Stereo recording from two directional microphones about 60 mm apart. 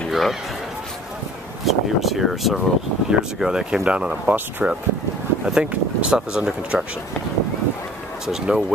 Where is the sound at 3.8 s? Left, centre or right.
Centre.